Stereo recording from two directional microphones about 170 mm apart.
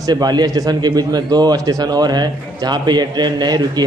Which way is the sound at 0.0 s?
25° right (ahead or behind).